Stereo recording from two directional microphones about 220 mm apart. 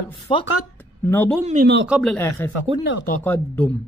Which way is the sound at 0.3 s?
25° left (ahead or behind).